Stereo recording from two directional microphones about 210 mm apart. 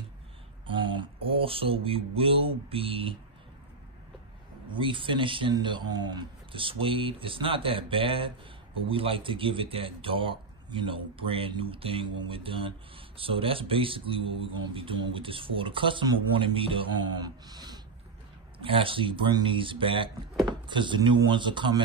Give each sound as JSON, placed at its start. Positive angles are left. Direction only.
{"t": 0.7, "sound": "mantra", "side_deg": -25}
{"t": 4.7, "sound": "speech", "side_deg": -25}